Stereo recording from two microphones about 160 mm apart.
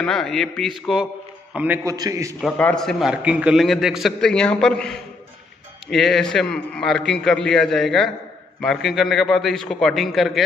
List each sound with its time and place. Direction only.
0.0 s a man's voice: 5° left (ahead or behind)
1.9 s a man's voice: 20° right (ahead or behind)
2.4 s a man's voice: 5° left (ahead or behind)